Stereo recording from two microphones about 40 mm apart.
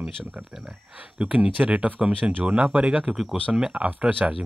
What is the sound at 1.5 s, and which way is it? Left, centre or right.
Speech, right.